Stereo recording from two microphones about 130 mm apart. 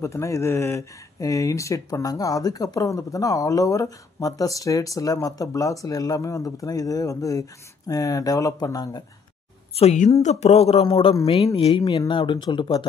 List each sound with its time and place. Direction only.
0.0 s speech: 20° left (ahead or behind)
9.8 s a woman's voice: 65° left (ahead or behind); by 12.8 s 35° left (ahead or behind)